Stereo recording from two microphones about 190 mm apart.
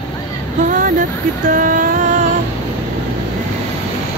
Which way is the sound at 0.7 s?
45° right (ahead or behind).